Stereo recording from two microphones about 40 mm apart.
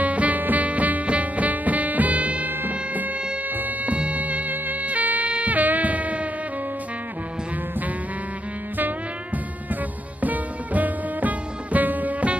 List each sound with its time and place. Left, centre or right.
0.0 s music: right
5.6 s music: right
10.2 s music: right